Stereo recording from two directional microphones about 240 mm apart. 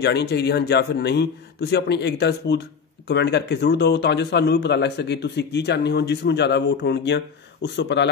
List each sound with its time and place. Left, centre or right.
0.0 s speech: left